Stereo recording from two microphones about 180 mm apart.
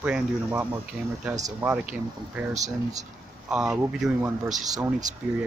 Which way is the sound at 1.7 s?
5° right (ahead or behind).